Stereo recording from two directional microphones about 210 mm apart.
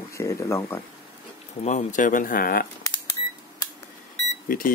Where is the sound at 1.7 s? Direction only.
35° left (ahead or behind).